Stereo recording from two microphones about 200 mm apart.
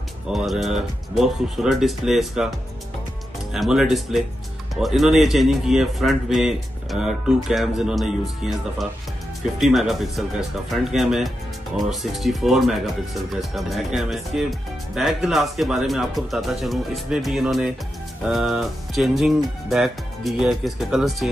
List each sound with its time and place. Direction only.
0.3 s speech: centre (ahead or behind)
3.5 s speech: centre (ahead or behind)